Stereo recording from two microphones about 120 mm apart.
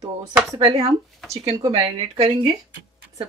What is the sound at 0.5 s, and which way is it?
Speech, 35° right (ahead or behind).